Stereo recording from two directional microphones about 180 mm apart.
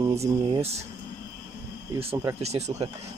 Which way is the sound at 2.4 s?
35° right (ahead or behind).